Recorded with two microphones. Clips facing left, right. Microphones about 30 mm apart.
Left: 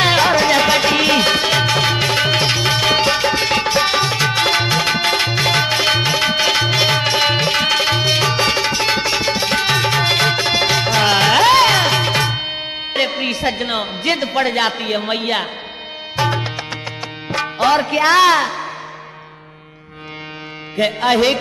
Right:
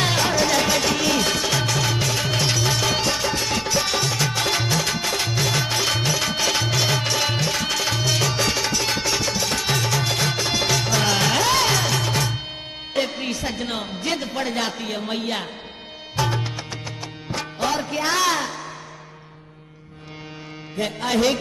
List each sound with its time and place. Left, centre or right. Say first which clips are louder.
0.0 s music: left 7 dB; left
17.3 s speech: left 9 dB; left
20.7 s music: left 7 dB; left